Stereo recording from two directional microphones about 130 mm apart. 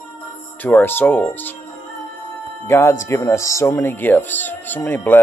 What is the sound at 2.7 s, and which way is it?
Speech, 20° left (ahead or behind).